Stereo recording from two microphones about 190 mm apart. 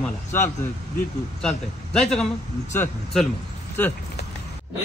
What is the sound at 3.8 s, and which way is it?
Speech, 10° left (ahead or behind).